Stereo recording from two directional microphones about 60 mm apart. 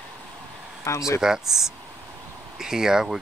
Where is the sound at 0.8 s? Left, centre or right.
Left.